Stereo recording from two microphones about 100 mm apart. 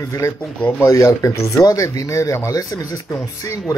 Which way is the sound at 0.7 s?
25° left (ahead or behind).